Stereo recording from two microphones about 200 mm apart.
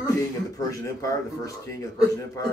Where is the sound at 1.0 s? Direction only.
15° left (ahead or behind).